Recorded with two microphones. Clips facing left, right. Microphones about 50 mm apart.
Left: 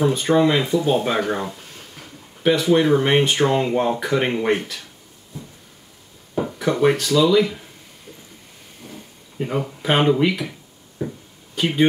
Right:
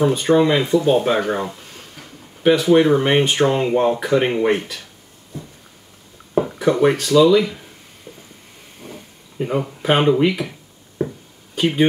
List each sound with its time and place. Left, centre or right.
0.0 s speech: centre
6.4 s speech: centre
8.8 s a sound: right
9.4 s speech: centre
11.5 s speech: centre